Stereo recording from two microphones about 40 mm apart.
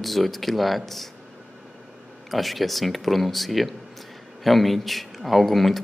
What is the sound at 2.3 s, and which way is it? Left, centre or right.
Speech, centre.